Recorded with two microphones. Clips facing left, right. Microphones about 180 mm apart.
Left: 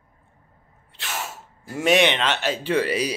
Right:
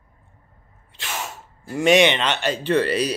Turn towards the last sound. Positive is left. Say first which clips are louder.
# right 2 dB
turn(degrees=10)  # may be behind; listen again after turning